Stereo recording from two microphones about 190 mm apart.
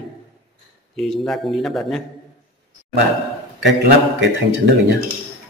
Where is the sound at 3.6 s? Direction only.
70° right (ahead or behind).